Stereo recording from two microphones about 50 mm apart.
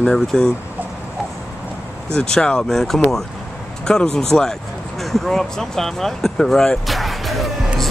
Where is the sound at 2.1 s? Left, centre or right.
Centre.